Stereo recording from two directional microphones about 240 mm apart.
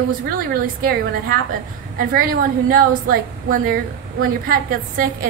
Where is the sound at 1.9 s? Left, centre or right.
Right.